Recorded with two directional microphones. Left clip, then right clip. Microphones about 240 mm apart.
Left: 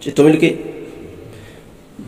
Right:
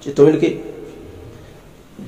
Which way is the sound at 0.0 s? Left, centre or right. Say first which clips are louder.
Left 1 dB; left.